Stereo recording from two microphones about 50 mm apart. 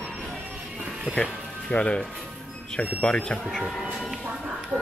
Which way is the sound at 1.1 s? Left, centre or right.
Centre.